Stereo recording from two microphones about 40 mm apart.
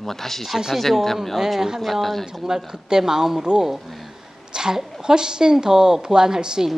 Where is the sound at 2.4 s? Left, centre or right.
Centre.